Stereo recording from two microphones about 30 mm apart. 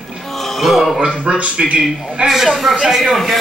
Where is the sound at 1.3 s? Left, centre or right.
Right.